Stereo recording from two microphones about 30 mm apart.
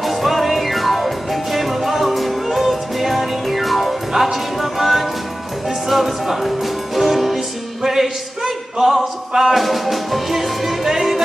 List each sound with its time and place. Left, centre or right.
0.0 s music: centre
7.3 s music: centre
8.5 s a sound: centre
9.3 s music: centre
9.6 s speech: centre